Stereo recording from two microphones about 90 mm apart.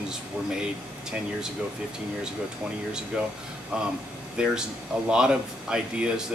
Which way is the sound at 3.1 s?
10° right (ahead or behind).